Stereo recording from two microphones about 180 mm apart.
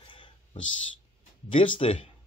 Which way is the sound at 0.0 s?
25° left (ahead or behind).